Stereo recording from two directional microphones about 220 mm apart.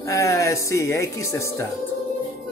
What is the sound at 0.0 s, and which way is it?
Speech, 15° left (ahead or behind).